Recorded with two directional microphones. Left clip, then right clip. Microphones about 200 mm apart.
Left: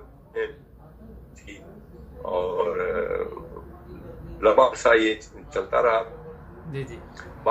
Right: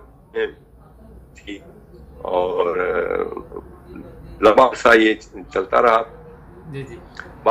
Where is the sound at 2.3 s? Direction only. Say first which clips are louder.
Right 6 dB; 40° right (ahead or behind).